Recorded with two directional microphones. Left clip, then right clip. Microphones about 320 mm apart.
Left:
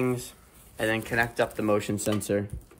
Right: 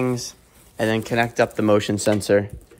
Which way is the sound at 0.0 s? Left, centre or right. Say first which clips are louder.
Right 5 dB; right.